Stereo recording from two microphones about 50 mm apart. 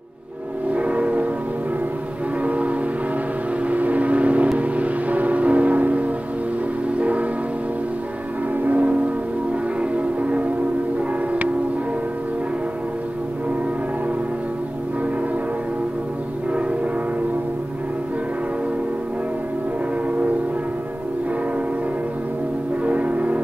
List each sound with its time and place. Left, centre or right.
0.7 s a sound: right
2.4 s music: right
3.6 s vehicle: right
4.6 s music: right
7.0 s train: right
8.6 s music: right
22.8 s change ringing: right